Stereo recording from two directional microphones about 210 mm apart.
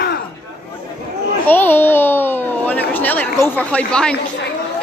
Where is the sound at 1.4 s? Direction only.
10° left (ahead or behind).